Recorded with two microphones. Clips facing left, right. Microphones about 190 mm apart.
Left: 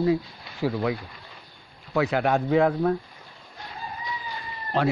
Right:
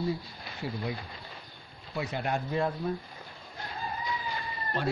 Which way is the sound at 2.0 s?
85° left.